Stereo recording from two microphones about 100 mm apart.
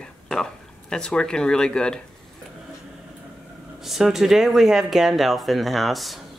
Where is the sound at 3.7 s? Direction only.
5° right (ahead or behind).